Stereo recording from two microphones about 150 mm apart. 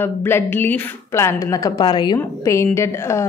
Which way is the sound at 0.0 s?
15° left (ahead or behind).